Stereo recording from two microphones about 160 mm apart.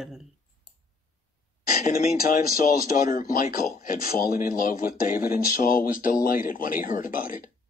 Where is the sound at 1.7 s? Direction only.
65° left (ahead or behind).